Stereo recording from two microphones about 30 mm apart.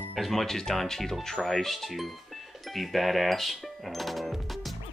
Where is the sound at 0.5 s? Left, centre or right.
Centre.